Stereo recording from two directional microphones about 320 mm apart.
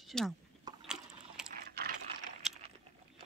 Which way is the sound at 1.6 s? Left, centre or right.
Right.